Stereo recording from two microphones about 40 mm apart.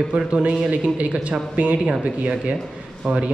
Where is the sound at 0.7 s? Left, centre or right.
Right.